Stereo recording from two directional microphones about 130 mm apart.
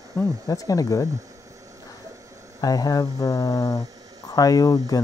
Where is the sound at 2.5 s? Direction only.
30° left (ahead or behind).